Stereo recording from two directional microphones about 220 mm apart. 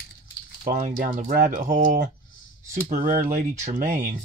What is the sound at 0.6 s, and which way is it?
Speech, 35° right (ahead or behind).